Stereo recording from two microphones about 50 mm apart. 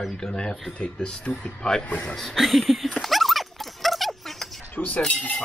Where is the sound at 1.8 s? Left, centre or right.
Left.